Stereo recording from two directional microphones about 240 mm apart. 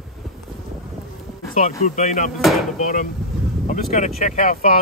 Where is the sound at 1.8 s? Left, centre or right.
Left.